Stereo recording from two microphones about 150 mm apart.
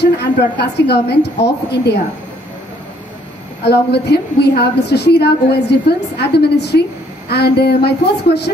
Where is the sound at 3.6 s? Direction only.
90° left.